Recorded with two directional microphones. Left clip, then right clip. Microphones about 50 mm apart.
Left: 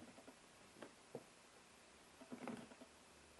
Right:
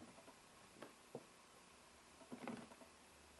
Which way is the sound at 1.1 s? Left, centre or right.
Centre.